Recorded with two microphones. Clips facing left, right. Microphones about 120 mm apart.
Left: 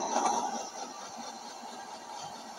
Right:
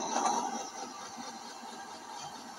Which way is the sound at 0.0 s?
30° left (ahead or behind).